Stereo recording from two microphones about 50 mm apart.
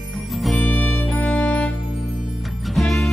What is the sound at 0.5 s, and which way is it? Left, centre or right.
Music, left.